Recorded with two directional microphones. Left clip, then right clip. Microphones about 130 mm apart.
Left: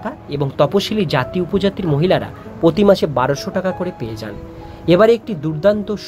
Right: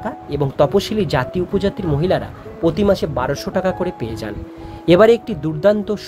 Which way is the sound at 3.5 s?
15° right (ahead or behind).